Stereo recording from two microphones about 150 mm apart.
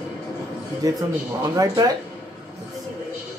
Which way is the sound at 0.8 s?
25° right (ahead or behind).